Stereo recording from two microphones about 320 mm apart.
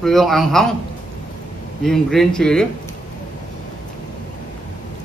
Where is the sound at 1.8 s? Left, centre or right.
Centre.